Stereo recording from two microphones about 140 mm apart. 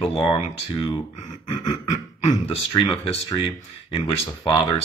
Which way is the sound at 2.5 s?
40° left (ahead or behind).